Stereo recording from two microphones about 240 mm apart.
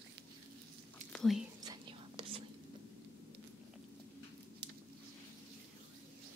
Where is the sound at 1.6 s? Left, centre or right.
Centre.